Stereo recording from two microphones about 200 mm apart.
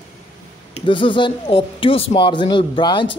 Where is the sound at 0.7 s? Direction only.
25° left (ahead or behind).